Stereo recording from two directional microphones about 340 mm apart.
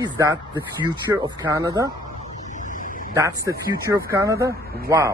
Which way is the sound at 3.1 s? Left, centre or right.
Centre.